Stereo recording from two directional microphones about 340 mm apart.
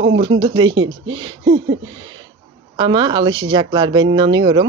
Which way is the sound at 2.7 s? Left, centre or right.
Centre.